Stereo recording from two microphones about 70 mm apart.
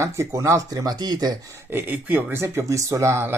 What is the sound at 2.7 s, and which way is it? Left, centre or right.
Speech, right.